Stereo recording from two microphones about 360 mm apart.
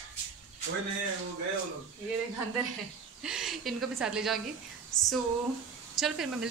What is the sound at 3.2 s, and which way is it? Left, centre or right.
Speech, centre.